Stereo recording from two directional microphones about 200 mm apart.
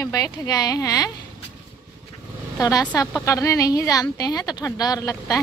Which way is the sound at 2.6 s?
20° left (ahead or behind).